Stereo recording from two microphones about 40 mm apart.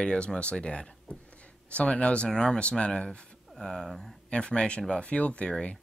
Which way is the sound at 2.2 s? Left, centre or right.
Centre.